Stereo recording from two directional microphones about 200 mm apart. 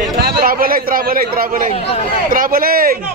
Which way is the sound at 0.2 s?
50° right (ahead or behind).